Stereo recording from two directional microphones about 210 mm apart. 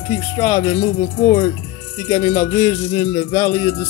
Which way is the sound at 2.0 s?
30° left (ahead or behind).